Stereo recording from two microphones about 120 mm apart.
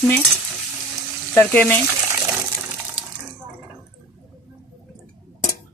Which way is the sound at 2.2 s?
20° right (ahead or behind).